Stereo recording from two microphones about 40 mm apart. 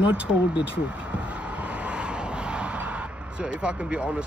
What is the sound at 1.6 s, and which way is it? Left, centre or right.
Vehicle, right.